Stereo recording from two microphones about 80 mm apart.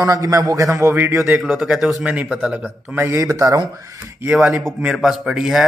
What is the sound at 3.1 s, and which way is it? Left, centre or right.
Speech, right.